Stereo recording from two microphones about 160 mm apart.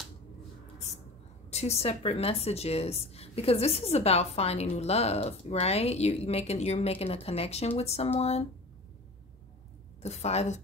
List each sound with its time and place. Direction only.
1.5 s speech: 40° left (ahead or behind)
10.0 s a woman's voice: 40° left (ahead or behind)